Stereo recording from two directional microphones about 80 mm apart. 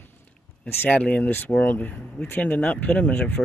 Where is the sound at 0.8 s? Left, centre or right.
Centre.